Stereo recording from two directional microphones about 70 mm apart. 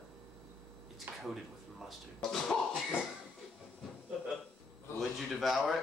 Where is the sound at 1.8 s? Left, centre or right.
Centre.